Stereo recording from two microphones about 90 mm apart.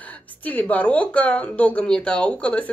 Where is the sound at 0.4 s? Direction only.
20° left (ahead or behind).